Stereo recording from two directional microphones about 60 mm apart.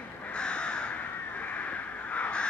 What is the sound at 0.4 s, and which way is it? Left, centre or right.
Crow, centre.